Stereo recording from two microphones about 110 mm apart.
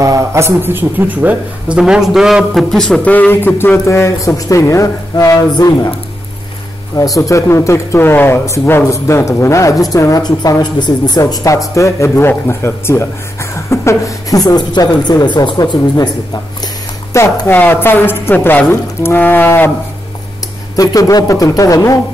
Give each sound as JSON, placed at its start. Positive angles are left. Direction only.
{"t": 0.0, "sound": "speech", "side_deg": -30}
{"t": 7.0, "sound": "a woman's voice", "side_deg": 30}
{"t": 17.1, "sound": "speech", "side_deg": 25}
{"t": 20.7, "sound": "a woman's voice", "side_deg": 35}